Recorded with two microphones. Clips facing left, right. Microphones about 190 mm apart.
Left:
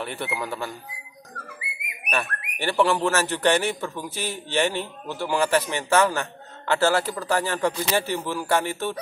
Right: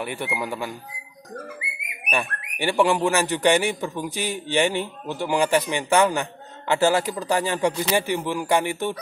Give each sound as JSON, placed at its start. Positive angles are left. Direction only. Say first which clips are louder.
{"t": 0.0, "sound": "speech", "louder": "right 2 dB", "side_deg": -10}
{"t": 2.0, "sound": "speech", "louder": "right 1 dB", "side_deg": -15}